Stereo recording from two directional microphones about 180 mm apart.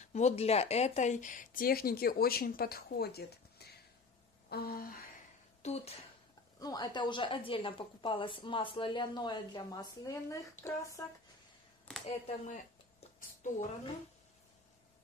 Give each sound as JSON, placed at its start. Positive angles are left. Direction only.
{"t": 0.1, "sound": "speech", "side_deg": 35}
{"t": 4.5, "sound": "a sound", "side_deg": 60}
{"t": 5.6, "sound": "a woman's voice", "side_deg": 35}
{"t": 6.6, "sound": "a woman's voice", "side_deg": 20}
{"t": 12.3, "sound": "speech", "side_deg": 45}